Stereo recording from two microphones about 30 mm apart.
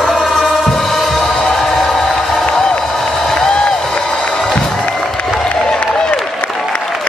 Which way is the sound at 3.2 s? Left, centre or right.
Centre.